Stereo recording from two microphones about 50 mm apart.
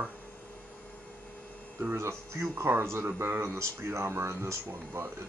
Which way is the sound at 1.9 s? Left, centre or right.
Right.